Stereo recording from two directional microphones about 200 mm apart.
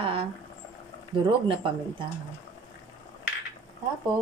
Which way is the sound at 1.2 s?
25° right (ahead or behind).